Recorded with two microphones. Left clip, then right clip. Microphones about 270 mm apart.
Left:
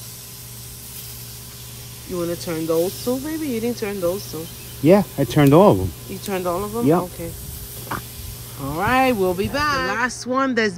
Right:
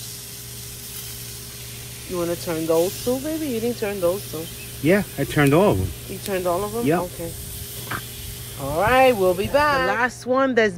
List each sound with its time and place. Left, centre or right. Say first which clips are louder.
2.1 s speech: even; centre
4.8 s speech: left 5 dB; left
6.3 s speech: right 1 dB; centre
8.7 s speech: right 2 dB; centre